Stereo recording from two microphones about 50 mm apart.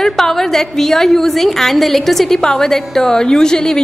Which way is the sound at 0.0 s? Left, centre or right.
Centre.